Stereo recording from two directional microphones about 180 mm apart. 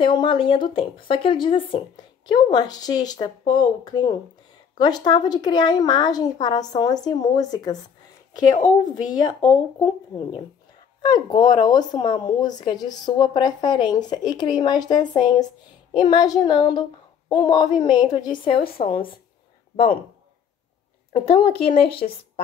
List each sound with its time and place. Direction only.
0.0 s speech: 25° left (ahead or behind)
8.5 s speech: 40° left (ahead or behind)
8.9 s speech: 20° left (ahead or behind)
21.1 s speech: 30° left (ahead or behind)